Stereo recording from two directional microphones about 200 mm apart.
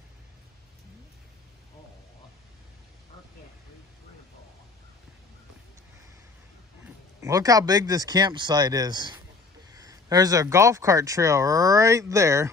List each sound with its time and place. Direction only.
7.2 s speech: 15° right (ahead or behind)